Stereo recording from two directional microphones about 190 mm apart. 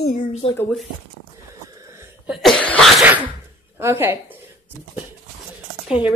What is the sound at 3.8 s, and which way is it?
Speech, 15° right (ahead or behind).